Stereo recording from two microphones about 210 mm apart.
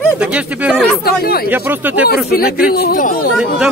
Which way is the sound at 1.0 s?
45° left (ahead or behind).